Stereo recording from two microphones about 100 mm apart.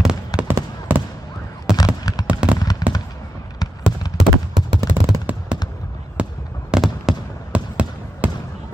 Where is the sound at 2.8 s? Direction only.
40° left (ahead or behind).